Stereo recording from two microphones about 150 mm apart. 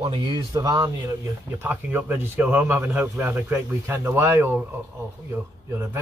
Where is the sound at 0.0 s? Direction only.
30° right (ahead or behind).